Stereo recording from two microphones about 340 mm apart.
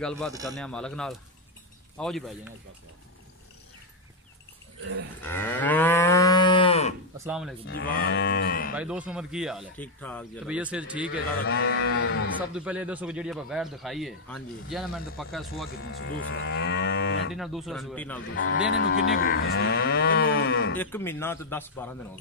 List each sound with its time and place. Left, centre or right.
0.0 s speech: centre
5.2 s moo: centre
7.2 s speech: centre
7.6 s moo: left
8.7 s speech: centre
11.1 s moo: left
12.4 s speech: centre
15.7 s livestock: left
17.3 s speech: centre
18.3 s speech: left
18.7 s moo: left
20.7 s a man's voice: centre